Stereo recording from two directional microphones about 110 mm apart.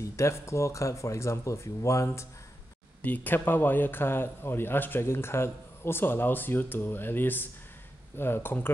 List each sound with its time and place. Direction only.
0.0 s a man's voice: 25° left (ahead or behind)
3.0 s a man's voice: 15° left (ahead or behind)